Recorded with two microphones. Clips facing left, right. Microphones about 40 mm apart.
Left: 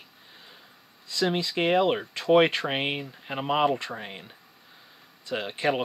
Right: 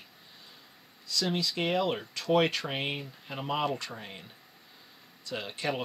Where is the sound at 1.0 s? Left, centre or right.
Left.